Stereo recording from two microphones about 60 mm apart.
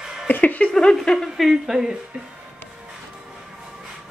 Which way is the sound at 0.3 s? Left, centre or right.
Left.